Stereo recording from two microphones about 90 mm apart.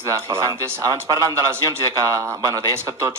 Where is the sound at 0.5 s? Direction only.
50° right (ahead or behind).